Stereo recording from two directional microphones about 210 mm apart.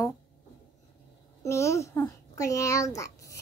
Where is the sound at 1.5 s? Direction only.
15° left (ahead or behind).